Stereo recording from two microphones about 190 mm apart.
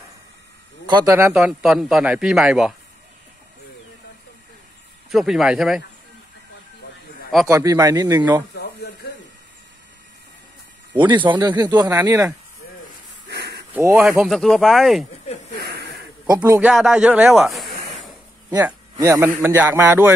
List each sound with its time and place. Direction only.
0.8 s speech: 25° right (ahead or behind)
1.3 s speech: centre (ahead or behind)
5.1 s speech: centre (ahead or behind)
7.4 s a man's voice: 20° right (ahead or behind)
11.0 s speech: 25° right (ahead or behind)
13.3 s a sound: 60° right (ahead or behind)
13.7 s a man's voice: 10° right (ahead or behind)
14.2 s speech: centre (ahead or behind)
15.6 s a sound: 60° right (ahead or behind)
16.3 s a man's voice: 10° right (ahead or behind)
18.5 s a man's voice: 15° right (ahead or behind)